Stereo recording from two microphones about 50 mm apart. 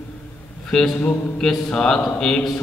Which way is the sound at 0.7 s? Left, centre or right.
Centre.